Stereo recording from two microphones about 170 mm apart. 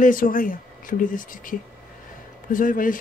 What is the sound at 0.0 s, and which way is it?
Speech, 55° left (ahead or behind).